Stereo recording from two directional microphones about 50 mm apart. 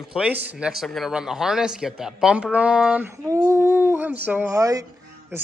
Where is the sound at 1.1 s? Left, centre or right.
Centre.